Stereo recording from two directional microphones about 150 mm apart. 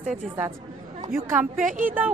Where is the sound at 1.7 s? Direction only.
60° right (ahead or behind).